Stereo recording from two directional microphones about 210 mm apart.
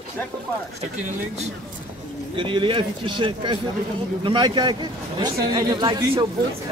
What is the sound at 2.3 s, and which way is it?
Speech, 25° right (ahead or behind).